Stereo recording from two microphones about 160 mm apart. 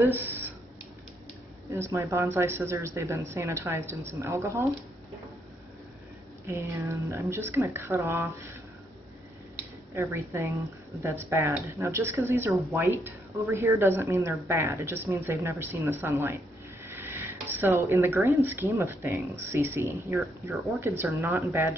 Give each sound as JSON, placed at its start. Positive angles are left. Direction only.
{"t": 0.0, "sound": "speech", "side_deg": -10}
{"t": 1.9, "sound": "a woman's voice", "side_deg": -15}
{"t": 6.4, "sound": "a woman's voice", "side_deg": -20}
{"t": 9.9, "sound": "a woman's voice", "side_deg": -15}